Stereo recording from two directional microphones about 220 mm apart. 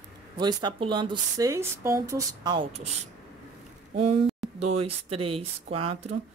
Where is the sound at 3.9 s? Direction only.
30° right (ahead or behind).